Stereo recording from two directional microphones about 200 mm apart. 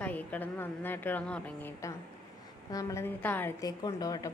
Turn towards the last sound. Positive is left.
turn(degrees=20)  # may be behind; listen again after turning